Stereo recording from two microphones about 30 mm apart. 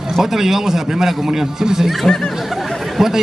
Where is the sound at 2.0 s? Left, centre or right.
Left.